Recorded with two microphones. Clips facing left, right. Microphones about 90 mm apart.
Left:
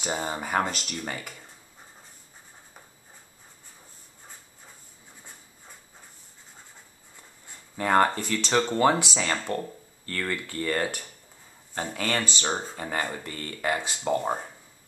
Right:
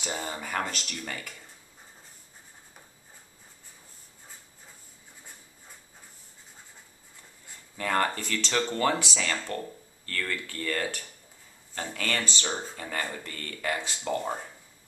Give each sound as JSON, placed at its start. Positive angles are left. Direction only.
{"t": 0.0, "sound": "speech", "side_deg": 25}
{"t": 7.7, "sound": "speech", "side_deg": 25}
{"t": 14.0, "sound": "speech", "side_deg": 30}